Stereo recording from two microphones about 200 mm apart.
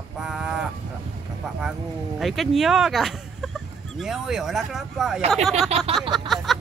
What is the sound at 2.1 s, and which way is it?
Speech, centre (ahead or behind).